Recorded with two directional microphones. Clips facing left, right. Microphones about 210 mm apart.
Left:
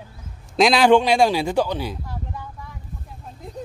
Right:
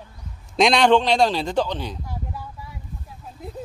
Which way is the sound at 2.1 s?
5° right (ahead or behind).